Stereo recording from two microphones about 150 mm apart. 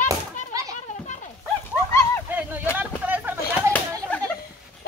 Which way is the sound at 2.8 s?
10° right (ahead or behind).